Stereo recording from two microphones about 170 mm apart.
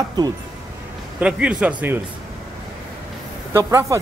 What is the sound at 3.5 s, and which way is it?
Speech, 15° right (ahead or behind).